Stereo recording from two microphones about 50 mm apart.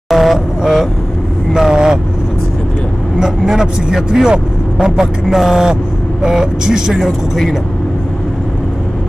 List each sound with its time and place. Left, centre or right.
0.1 s vehicle: centre
3.2 s speech: centre
7.1 s speech: centre